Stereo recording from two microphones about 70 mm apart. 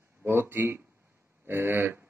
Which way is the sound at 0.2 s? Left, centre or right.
Right.